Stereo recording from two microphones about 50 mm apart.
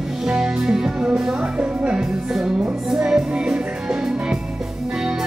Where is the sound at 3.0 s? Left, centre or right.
Centre.